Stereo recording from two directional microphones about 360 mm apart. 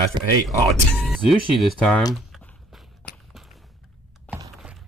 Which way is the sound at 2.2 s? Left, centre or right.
Centre.